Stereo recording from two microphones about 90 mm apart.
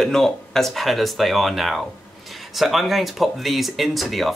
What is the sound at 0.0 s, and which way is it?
Speech, 5° left (ahead or behind).